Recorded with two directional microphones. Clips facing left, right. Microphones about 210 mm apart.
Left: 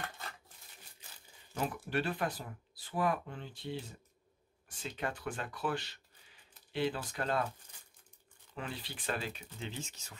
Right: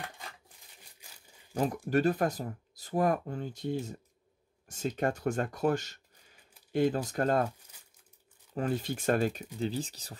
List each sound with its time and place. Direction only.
1.5 s speech: 40° right (ahead or behind)
7.7 s crumpling: 5° right (ahead or behind)
8.5 s speech: 45° right (ahead or behind)